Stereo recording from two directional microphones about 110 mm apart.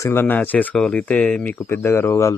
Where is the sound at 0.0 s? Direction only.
20° left (ahead or behind).